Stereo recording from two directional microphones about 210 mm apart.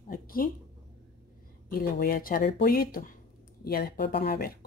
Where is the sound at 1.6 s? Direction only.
45° left (ahead or behind).